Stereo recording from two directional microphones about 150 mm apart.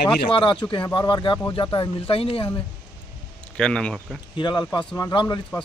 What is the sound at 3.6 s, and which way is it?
Speech, 5° left (ahead or behind).